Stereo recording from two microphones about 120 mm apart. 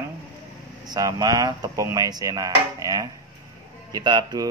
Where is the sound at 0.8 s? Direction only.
35° right (ahead or behind).